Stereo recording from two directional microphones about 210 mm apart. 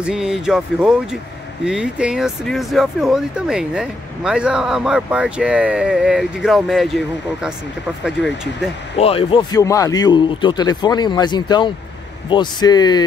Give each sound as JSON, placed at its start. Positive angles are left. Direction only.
{"t": 0.0, "sound": "speech", "side_deg": -5}
{"t": 8.9, "sound": "a man's voice", "side_deg": 25}